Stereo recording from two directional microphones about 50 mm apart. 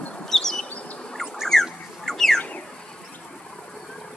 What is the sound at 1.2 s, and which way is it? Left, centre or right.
Bird, centre.